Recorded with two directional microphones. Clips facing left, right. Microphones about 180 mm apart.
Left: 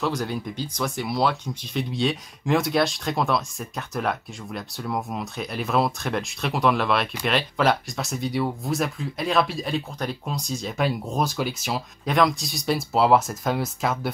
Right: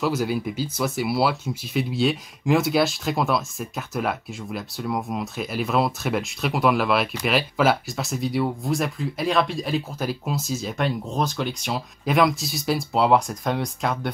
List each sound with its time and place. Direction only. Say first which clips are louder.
0.0 s speech: right 3 dB; 5° right (ahead or behind)
11.1 s speech: even; 10° left (ahead or behind)